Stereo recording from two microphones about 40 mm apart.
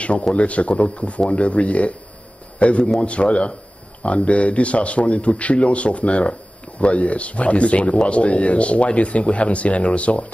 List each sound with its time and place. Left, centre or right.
0.3 s speech: left
2.8 s speech: centre
3.1 s speech: left